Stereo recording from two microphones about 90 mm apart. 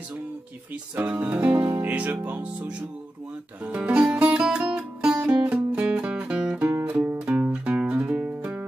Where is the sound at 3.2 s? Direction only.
15° right (ahead or behind).